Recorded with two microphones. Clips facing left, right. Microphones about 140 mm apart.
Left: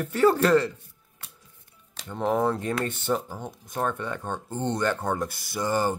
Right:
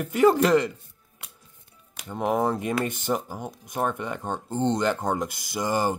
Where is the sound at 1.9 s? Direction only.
15° right (ahead or behind).